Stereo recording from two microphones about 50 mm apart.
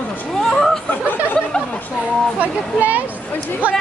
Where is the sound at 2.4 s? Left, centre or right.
Right.